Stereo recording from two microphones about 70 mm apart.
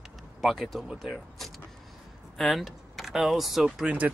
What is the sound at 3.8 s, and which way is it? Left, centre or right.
Speech, centre.